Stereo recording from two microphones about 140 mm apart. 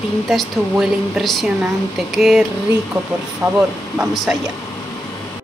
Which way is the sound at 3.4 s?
25° right (ahead or behind).